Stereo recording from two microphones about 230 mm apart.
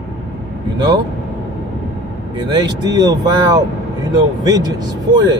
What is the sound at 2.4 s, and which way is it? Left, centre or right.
Speech, centre.